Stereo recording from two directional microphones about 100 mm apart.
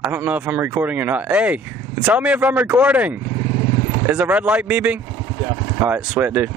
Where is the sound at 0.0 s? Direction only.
20° right (ahead or behind).